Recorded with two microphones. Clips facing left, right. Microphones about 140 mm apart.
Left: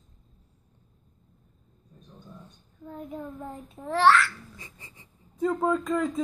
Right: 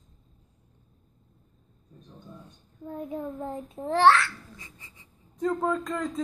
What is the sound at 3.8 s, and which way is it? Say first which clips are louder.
Speech: right 1 dB; 25° right (ahead or behind).